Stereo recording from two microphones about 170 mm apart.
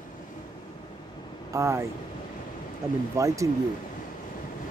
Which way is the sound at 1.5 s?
15° right (ahead or behind).